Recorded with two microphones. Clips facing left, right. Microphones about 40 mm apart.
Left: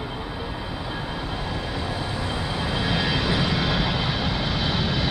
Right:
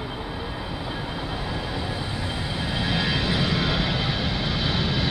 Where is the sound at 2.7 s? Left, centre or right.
Centre.